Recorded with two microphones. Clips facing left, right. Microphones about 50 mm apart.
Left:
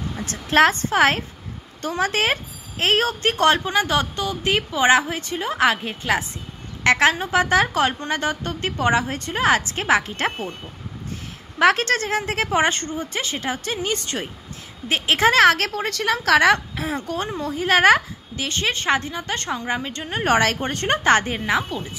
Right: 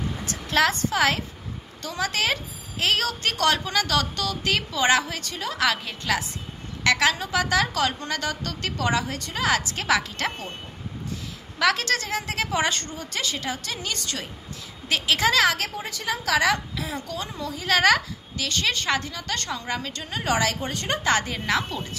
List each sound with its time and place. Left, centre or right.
0.2 s a woman's voice: left
11.5 s a woman's voice: left
15.7 s a woman's voice: left
21.5 s speech: centre